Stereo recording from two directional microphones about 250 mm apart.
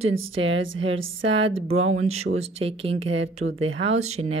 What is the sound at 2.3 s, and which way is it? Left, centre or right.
Speech, right.